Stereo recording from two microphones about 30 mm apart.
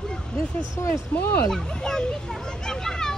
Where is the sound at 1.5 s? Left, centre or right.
Left.